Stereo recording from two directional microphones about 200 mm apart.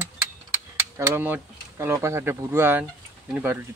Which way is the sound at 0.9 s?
10° right (ahead or behind).